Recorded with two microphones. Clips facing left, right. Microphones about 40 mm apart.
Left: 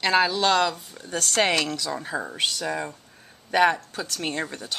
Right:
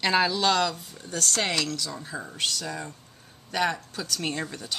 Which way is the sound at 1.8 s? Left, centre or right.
Left.